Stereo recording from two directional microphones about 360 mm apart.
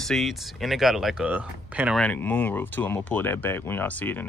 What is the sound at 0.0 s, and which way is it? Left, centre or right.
Speech, centre.